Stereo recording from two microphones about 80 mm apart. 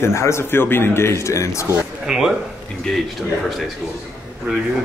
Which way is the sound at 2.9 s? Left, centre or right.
Centre.